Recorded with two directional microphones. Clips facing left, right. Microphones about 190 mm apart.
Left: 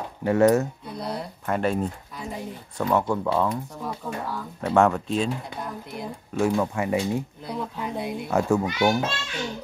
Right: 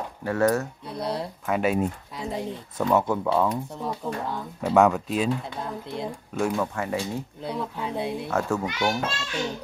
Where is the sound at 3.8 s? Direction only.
25° right (ahead or behind).